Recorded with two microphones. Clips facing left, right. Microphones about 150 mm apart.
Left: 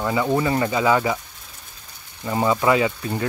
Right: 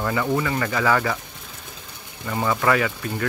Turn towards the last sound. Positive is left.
turn(degrees=20)  # may be behind; listen again after turning